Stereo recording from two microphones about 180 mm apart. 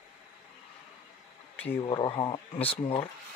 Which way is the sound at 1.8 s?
25° left (ahead or behind).